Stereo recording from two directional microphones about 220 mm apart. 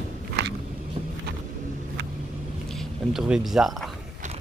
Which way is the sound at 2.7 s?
Centre (ahead or behind).